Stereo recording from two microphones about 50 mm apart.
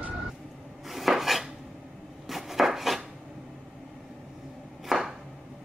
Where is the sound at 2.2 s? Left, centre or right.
Centre.